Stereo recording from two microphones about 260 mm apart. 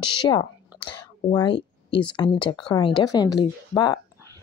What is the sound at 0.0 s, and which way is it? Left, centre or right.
Speech, centre.